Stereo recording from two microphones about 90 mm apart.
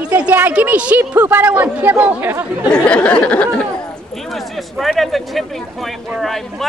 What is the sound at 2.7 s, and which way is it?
Speech, 10° left (ahead or behind).